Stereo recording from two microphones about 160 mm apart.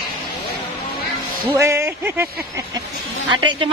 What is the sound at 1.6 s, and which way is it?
Speech, 15° right (ahead or behind).